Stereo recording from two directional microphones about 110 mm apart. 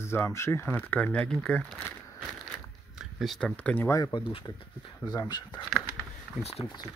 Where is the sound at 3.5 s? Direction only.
15° left (ahead or behind).